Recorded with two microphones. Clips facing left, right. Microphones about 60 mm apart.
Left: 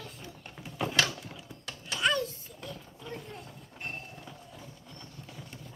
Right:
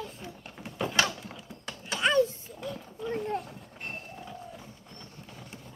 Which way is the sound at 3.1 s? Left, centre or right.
Right.